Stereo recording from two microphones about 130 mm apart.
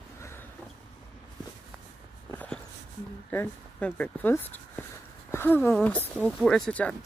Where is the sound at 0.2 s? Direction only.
20° left (ahead or behind).